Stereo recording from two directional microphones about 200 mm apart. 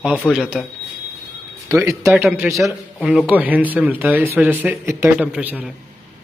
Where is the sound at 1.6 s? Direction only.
15° right (ahead or behind).